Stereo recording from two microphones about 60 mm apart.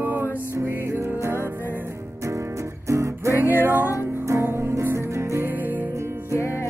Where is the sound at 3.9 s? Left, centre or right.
Right.